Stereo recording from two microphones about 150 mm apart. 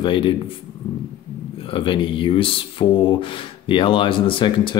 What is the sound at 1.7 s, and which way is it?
Speech, 35° left (ahead or behind).